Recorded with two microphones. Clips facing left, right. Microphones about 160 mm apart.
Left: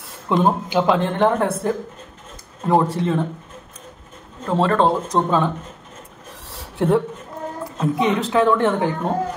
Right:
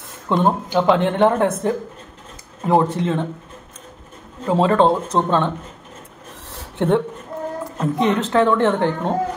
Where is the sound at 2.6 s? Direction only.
Centre (ahead or behind).